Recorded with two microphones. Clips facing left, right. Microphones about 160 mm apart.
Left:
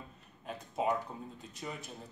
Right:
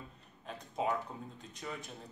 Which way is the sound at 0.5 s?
5° left (ahead or behind).